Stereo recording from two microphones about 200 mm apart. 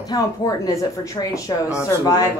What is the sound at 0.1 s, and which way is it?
Speech, 15° left (ahead or behind).